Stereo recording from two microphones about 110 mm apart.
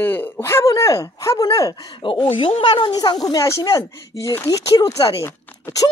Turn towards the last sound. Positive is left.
turn(degrees=25)  # may be behind; listen again after turning